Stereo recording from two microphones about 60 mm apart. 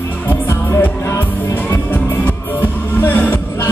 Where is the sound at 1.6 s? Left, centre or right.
Left.